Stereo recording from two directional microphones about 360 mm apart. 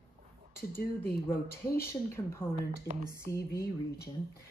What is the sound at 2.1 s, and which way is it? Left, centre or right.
Speech, centre.